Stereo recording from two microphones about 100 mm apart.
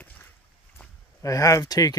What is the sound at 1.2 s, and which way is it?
Speech, 35° left (ahead or behind).